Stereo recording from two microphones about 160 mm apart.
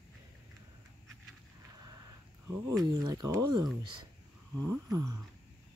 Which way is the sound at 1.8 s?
25° right (ahead or behind).